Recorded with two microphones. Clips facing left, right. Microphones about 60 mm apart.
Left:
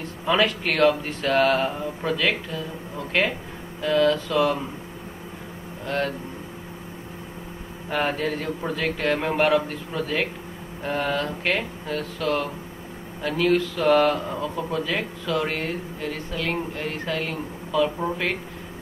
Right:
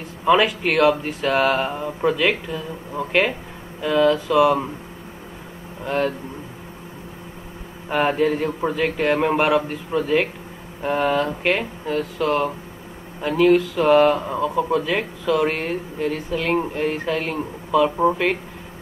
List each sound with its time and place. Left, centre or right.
0.3 s speech: centre
1.7 s speech: right
3.8 s speech: centre
5.9 s speech: centre
7.9 s speech: right